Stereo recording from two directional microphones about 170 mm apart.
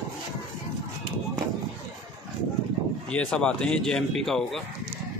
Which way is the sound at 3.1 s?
5° left (ahead or behind).